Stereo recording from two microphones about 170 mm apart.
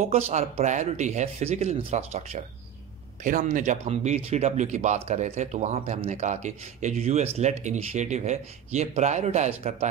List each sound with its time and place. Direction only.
0.1 s speech: 40° right (ahead or behind)